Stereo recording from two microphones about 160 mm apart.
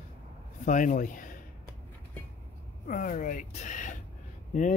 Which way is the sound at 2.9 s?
55° left (ahead or behind).